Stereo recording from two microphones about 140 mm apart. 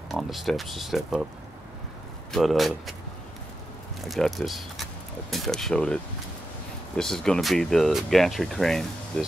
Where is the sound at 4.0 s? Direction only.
Centre (ahead or behind).